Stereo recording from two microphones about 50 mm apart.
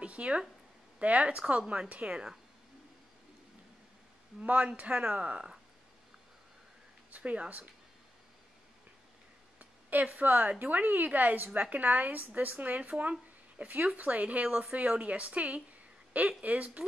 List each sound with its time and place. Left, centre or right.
0.0 s a sound: right
0.9 s speech: right
2.0 s speech: centre
4.4 s speech: right
7.1 s speech: right
9.6 s a sound: right
10.6 s speech: right